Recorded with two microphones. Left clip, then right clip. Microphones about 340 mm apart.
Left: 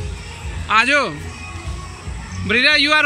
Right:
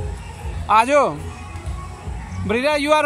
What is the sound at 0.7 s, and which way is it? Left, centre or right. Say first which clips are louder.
Speech: right 1 dB; centre.